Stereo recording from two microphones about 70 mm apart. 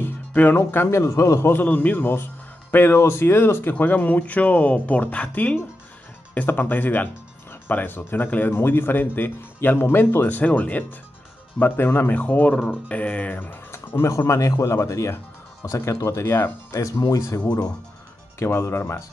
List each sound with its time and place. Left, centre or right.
0.0 s music: left
0.6 s speech: left
1.5 s speech: left
3.7 s speech: left
13.7 s a sound: left
14.0 s a man's voice: left
17.5 s speech: left
18.4 s speech: left